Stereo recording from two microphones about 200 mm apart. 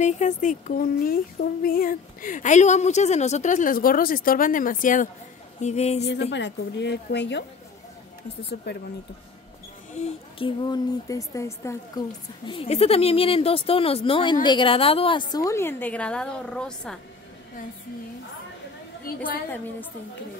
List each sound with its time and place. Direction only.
0.0 s speech: 40° left (ahead or behind)
6.3 s speech: 60° left (ahead or behind)
8.7 s speech: 55° left (ahead or behind)
9.9 s speech: 35° left (ahead or behind)
10.7 s a woman's voice: 15° left (ahead or behind)
12.4 s speech: 30° left (ahead or behind); by 17.0 s 5° left (ahead or behind)
19.0 s a woman's voice: 45° left (ahead or behind)